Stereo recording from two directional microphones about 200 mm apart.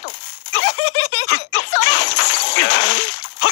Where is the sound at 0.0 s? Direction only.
60° left (ahead or behind).